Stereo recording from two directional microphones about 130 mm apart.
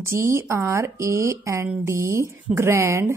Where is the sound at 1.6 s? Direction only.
10° right (ahead or behind).